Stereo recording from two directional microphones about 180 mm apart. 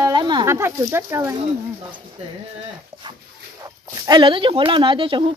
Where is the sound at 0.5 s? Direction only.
15° right (ahead or behind).